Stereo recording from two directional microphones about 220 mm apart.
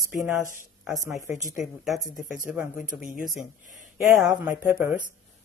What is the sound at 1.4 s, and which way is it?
Speech, centre (ahead or behind).